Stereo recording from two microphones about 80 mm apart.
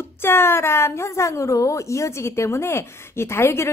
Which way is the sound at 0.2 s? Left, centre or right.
Left.